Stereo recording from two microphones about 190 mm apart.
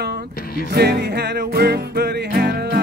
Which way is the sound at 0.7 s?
55° right (ahead or behind).